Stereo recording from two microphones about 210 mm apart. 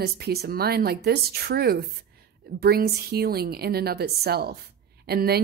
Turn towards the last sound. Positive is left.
turn(degrees=-50)  # may be behind; listen again after turning